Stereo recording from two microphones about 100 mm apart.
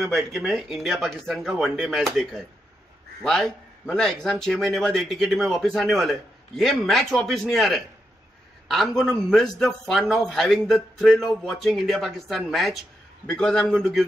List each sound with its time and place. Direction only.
0.3 s a man's voice: centre (ahead or behind)